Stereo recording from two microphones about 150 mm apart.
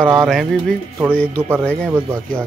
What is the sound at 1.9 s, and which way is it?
Speech, 15° right (ahead or behind).